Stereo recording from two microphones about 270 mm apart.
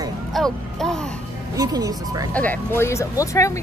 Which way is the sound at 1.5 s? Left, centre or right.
Centre.